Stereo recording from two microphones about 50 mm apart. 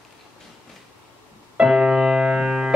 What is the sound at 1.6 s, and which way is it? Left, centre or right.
Music, centre.